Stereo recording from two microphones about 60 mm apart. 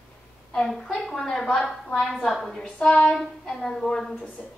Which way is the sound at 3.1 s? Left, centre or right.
Centre.